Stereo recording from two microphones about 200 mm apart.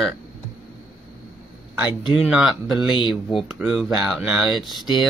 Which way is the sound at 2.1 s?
Centre (ahead or behind).